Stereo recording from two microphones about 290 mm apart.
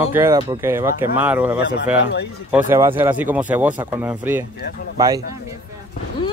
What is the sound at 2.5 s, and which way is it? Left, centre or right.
Speech, centre.